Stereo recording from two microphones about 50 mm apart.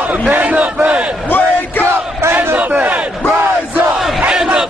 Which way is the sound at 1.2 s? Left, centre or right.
Left.